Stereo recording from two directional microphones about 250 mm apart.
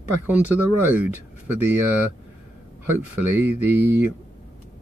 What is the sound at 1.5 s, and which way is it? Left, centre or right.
Speech, centre.